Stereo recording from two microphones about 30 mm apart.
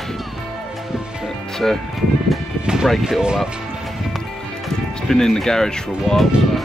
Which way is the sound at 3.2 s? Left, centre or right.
Right.